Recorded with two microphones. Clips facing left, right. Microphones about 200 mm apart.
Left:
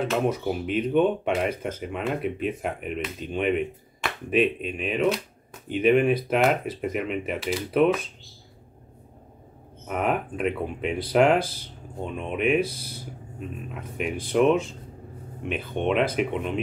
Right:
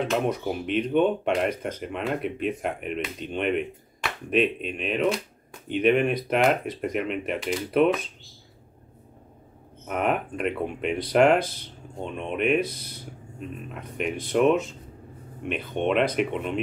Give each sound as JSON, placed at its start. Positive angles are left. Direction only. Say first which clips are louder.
{"t": 0.1, "sound": "speech", "louder": "left 1 dB", "side_deg": 0}
{"t": 9.8, "sound": "speech", "louder": "even", "side_deg": 0}
{"t": 11.3, "sound": "speech", "louder": "even", "side_deg": -55}
{"t": 12.0, "sound": "speech", "louder": "even", "side_deg": 5}